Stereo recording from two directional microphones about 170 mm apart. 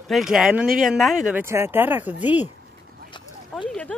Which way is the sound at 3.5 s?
5° right (ahead or behind).